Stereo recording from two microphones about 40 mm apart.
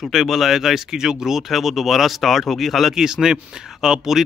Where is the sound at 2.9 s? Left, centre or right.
Centre.